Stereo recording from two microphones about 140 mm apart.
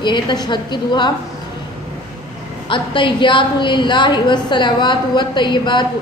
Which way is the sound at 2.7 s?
35° left (ahead or behind).